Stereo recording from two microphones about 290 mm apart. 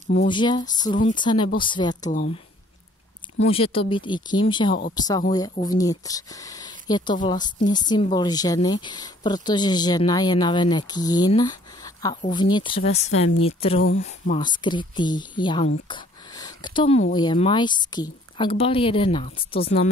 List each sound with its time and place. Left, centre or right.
0.1 s speech: centre
3.3 s speech: centre
15.9 s a sound: centre
17.1 s speech: centre